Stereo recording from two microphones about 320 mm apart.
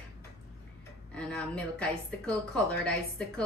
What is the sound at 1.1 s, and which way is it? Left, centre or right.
A woman's voice, centre.